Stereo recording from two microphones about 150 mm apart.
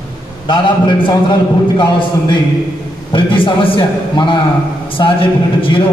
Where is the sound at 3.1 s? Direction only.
35° left (ahead or behind).